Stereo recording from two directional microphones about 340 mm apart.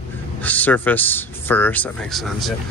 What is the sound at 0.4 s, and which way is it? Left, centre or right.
Speech, centre.